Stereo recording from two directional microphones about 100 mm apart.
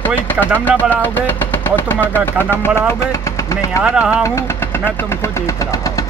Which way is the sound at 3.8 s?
10° right (ahead or behind).